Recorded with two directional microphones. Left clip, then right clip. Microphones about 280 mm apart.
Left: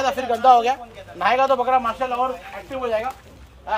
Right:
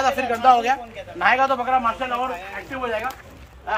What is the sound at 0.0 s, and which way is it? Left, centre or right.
Speech, left.